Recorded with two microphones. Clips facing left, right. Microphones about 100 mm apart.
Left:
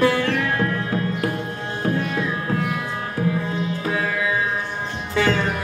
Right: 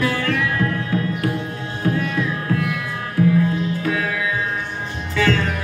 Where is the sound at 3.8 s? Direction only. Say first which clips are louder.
Right 1 dB; 30° left (ahead or behind).